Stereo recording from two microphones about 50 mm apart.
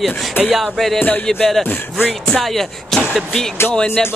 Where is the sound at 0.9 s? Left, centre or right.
Left.